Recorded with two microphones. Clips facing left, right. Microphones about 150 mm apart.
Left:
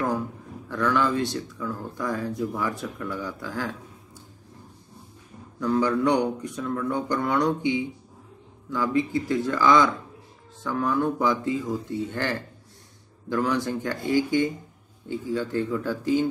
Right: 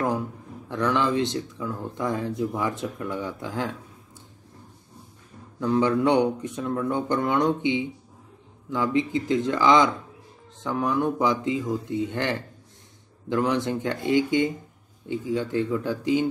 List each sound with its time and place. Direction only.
0.7 s speech: 20° right (ahead or behind)
5.6 s speech: 20° right (ahead or behind)